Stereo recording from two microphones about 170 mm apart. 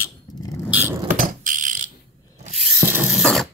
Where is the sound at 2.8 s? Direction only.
10° right (ahead or behind).